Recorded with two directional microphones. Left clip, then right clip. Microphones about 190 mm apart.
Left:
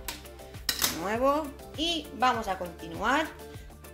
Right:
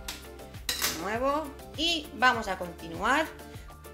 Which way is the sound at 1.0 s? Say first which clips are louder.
Left 3 dB; 20° left (ahead or behind).